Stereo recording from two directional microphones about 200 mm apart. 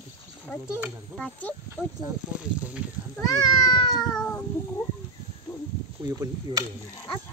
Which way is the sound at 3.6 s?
20° left (ahead or behind).